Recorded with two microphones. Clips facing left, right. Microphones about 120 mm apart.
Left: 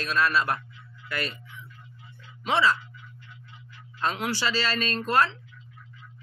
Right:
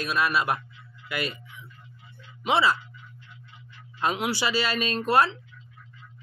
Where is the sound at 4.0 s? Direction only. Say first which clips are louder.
Right 2 dB; 15° right (ahead or behind).